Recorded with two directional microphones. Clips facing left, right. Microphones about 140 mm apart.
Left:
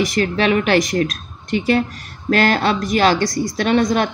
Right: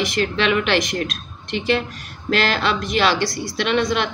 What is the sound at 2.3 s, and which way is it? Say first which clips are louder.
Speech: left 4 dB; 45° left (ahead or behind).